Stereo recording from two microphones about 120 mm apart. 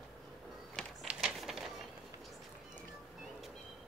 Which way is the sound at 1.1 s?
5° right (ahead or behind).